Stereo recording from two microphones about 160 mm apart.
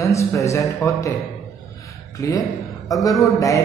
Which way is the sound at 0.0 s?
20° left (ahead or behind).